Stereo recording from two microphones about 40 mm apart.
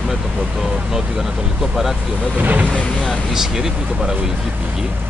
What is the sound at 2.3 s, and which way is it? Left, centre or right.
Speech, right.